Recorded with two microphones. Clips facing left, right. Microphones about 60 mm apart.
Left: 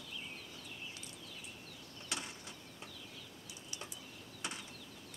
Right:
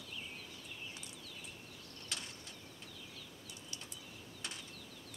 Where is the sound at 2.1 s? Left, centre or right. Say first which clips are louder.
Left 3 dB; left.